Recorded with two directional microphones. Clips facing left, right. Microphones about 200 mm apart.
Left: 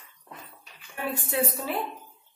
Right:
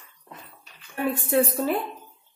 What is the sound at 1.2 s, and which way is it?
Speech, 50° right (ahead or behind).